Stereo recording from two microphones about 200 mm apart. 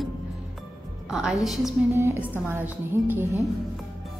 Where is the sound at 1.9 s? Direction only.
15° right (ahead or behind).